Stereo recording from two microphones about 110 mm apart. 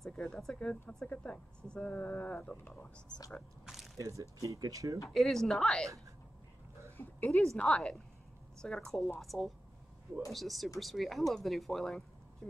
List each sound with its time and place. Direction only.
0.0 s speech: 5° left (ahead or behind)
3.3 s speech: centre (ahead or behind)
4.2 s speech: 30° right (ahead or behind)
5.1 s speech: 5° left (ahead or behind)
7.0 s a woman's voice: 25° left (ahead or behind)
7.3 s speech: 10° left (ahead or behind)